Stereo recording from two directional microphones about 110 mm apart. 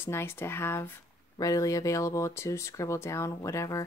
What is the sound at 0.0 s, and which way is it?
Speech, 20° left (ahead or behind).